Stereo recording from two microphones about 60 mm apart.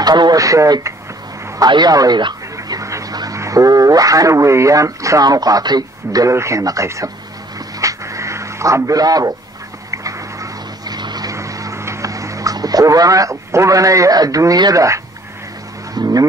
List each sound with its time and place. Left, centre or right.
0.0 s speech: right
1.6 s speech: right
2.5 s speech: right
6.3 s speech: right
6.6 s speech: right
7.8 s a sound: right
9.8 s vehicle: right
11.3 s vehicle: right
11.8 s speech: right
15.9 s speech: right